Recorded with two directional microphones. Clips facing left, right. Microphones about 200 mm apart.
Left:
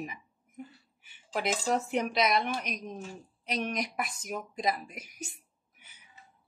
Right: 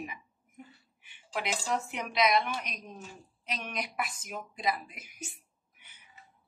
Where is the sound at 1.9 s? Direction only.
45° left (ahead or behind).